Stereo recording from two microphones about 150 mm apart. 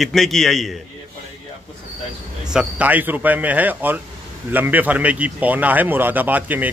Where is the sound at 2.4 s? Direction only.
5° right (ahead or behind).